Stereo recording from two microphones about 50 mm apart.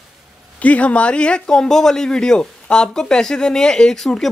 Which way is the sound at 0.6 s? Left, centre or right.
Left.